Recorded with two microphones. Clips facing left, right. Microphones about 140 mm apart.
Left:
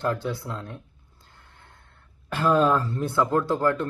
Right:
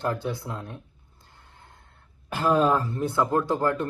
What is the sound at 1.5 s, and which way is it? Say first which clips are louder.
Gasp: right 2 dB; 15° right (ahead or behind).